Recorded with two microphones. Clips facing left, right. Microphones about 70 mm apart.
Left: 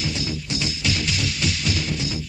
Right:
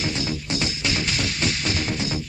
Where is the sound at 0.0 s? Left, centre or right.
Right.